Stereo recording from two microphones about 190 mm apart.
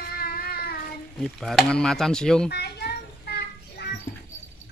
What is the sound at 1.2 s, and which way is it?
Speech, centre (ahead or behind).